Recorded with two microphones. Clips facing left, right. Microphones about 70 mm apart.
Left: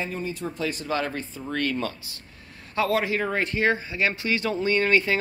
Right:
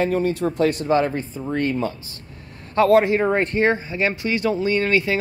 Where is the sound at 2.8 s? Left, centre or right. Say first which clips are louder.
Right 9 dB; right.